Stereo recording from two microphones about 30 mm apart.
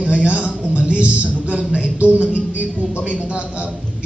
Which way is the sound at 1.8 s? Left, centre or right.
Right.